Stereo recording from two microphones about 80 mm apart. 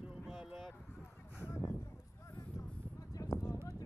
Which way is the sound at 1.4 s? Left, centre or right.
Left.